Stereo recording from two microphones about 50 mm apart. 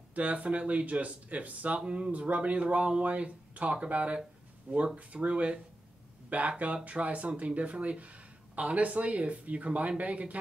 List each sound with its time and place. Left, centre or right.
0.1 s speech: right
1.8 s speech: centre
4.9 s speech: right
6.6 s speech: right